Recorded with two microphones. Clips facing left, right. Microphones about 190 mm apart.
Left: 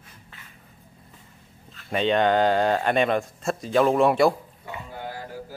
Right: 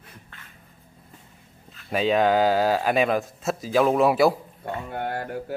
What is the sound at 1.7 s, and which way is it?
Speech, 5° right (ahead or behind).